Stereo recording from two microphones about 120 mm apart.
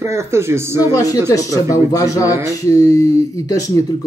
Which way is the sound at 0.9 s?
30° left (ahead or behind).